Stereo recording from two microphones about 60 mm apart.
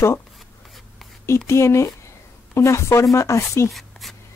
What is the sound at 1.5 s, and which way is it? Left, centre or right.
Speech, left.